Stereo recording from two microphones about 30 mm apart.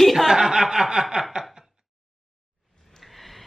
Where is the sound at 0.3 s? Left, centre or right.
Centre.